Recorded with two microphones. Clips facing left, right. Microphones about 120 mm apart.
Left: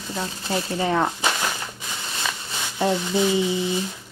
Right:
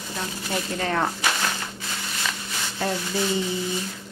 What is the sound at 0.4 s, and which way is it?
Speech, 30° left (ahead or behind).